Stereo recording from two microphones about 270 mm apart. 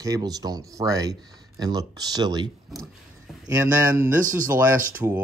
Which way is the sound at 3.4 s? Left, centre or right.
Centre.